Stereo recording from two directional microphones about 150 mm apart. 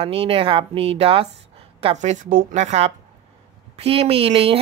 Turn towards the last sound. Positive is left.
turn(degrees=-40)  # may be behind; listen again after turning